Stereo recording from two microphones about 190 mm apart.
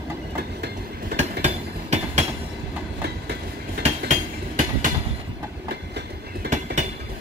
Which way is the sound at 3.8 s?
40° right (ahead or behind).